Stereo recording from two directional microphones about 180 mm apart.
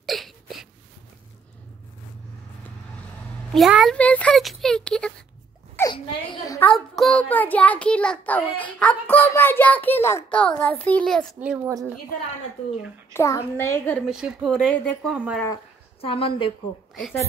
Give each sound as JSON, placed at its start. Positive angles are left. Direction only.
{"t": 0.0, "sound": "a sound", "side_deg": 0}
{"t": 3.5, "sound": "speech", "side_deg": 0}
{"t": 5.9, "sound": "a woman's voice", "side_deg": 25}
{"t": 6.7, "sound": "a child's voice", "side_deg": 5}
{"t": 11.3, "sound": "a woman's voice", "side_deg": -10}
{"t": 13.1, "sound": "a child's voice", "side_deg": 15}
{"t": 14.0, "sound": "speech", "side_deg": -5}
{"t": 15.1, "sound": "a woman's voice", "side_deg": -5}
{"t": 16.0, "sound": "a woman's voice", "side_deg": 30}